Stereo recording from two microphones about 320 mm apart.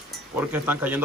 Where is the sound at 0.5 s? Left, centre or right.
Centre.